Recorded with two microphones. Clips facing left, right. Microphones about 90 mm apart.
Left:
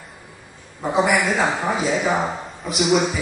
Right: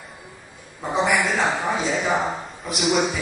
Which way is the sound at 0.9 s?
5° left (ahead or behind).